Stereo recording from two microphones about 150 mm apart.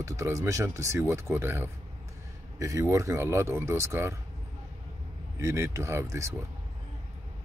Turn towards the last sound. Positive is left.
turn(degrees=-20)  # may be behind; listen again after turning